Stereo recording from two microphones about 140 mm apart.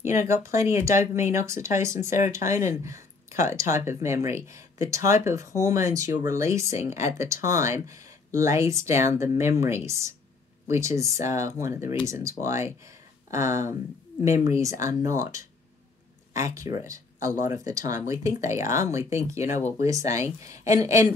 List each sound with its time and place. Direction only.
0.0 s speech: 20° right (ahead or behind)